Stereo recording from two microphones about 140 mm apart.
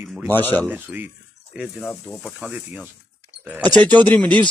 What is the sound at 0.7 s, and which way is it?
A man's voice, 10° right (ahead or behind).